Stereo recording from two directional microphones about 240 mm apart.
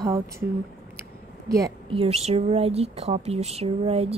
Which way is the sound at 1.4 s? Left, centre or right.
Centre.